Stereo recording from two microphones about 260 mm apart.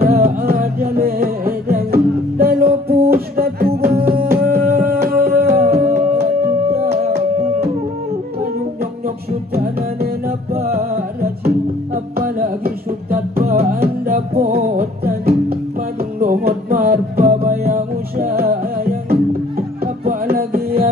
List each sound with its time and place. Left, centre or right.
0.0 s music: right
9.0 s music: right